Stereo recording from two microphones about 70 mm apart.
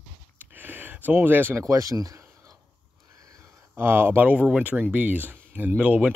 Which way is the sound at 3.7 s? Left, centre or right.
Right.